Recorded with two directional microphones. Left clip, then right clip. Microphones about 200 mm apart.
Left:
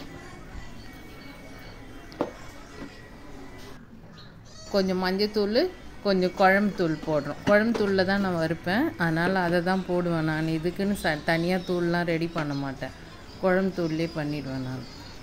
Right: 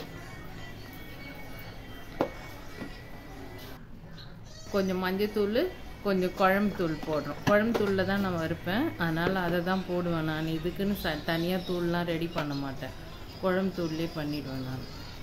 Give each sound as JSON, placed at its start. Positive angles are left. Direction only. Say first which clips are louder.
{"t": 4.7, "sound": "speech", "louder": "left 4 dB", "side_deg": 20}